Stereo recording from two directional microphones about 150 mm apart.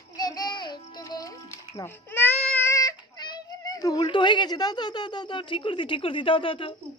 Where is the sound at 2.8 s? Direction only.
30° left (ahead or behind).